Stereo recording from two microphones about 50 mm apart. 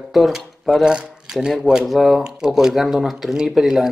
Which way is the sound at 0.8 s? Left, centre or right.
Centre.